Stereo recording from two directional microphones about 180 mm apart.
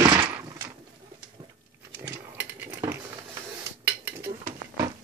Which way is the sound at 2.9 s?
15° right (ahead or behind).